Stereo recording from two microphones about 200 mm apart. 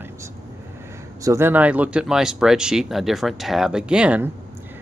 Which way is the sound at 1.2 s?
15° right (ahead or behind).